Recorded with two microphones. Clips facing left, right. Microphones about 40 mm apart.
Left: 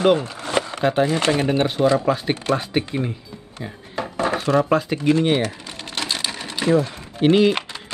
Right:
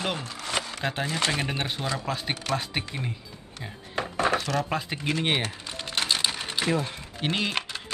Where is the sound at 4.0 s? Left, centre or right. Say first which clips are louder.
Left 3 dB; right.